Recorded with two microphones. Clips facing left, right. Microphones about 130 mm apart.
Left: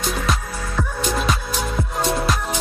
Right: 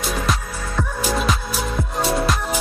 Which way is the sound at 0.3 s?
Centre (ahead or behind).